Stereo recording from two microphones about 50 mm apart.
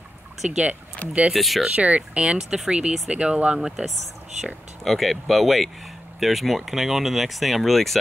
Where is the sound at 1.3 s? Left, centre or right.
Centre.